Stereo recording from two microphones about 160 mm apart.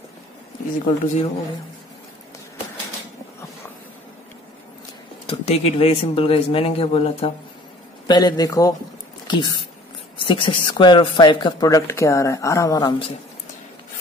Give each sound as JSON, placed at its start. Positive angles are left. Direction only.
{"t": 1.0, "sound": "speech", "side_deg": 45}
{"t": 5.3, "sound": "speech", "side_deg": 40}
{"t": 8.1, "sound": "speech", "side_deg": 25}